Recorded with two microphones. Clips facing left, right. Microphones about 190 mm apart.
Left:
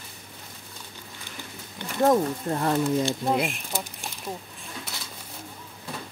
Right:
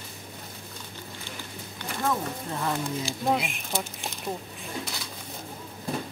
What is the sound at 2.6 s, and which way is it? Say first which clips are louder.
Speech: left 7 dB; 55° left (ahead or behind).